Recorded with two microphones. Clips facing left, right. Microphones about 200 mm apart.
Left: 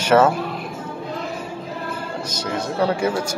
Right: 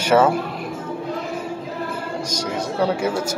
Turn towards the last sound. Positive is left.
turn(degrees=-10)  # may be behind; listen again after turning